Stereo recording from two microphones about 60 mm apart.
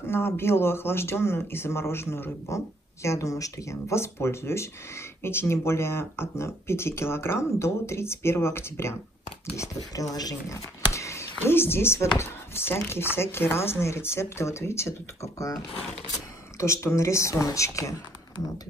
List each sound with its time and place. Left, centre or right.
0.1 s speech: left
2.5 s speech: left
3.9 s speech: left
9.9 s speech: left
10.9 s speech: left